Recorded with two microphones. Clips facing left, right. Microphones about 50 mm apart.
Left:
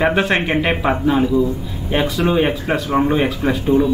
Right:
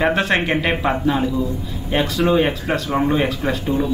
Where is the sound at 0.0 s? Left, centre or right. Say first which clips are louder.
Left 1 dB; centre.